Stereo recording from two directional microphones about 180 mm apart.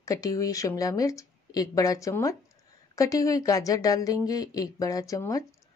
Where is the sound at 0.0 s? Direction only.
20° left (ahead or behind).